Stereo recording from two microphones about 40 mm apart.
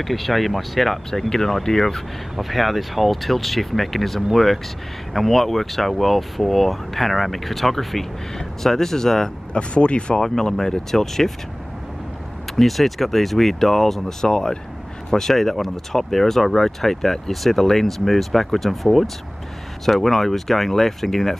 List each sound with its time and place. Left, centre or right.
0.0 s speech: centre
2.3 s speech: centre
9.5 s speech: left
10.2 s speech: centre
12.5 s speech: centre
14.2 s speech: centre